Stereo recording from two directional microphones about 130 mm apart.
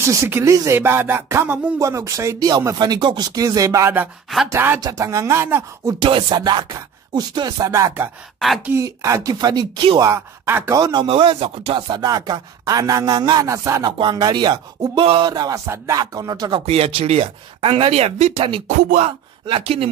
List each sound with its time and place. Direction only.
0.0 s music: 20° right (ahead or behind)
5.9 s speech: 40° right (ahead or behind); by 8.1 s 20° right (ahead or behind)
8.6 s music: 20° right (ahead or behind)
10.0 s music: 20° right (ahead or behind)
10.8 s speech: 35° right (ahead or behind)
11.9 s music: 30° right (ahead or behind)
13.9 s speech: 35° right (ahead or behind)
16.6 s speech: 55° right (ahead or behind)
18.7 s speech: 75° right (ahead or behind)
19.0 s speech: 45° right (ahead or behind)